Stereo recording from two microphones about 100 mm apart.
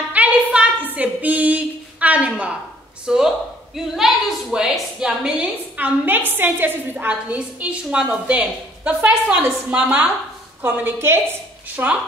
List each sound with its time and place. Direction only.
0.1 s a sound: 15° right (ahead or behind)
0.9 s a woman's voice: 15° right (ahead or behind)
5.8 s a woman's voice: 20° right (ahead or behind)